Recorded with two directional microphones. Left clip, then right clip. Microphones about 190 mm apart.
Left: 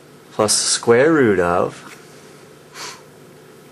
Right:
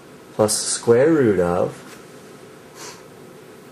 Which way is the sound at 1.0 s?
15° left (ahead or behind).